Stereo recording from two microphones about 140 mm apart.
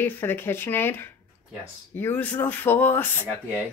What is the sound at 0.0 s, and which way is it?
Speech, 15° left (ahead or behind).